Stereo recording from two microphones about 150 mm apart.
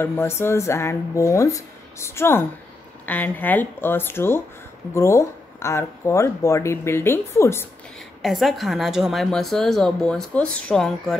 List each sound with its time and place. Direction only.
0.0 s speech: 15° left (ahead or behind)
8.2 s speech: centre (ahead or behind)